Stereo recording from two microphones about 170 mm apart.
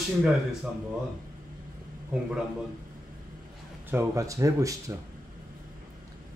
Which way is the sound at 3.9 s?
15° right (ahead or behind).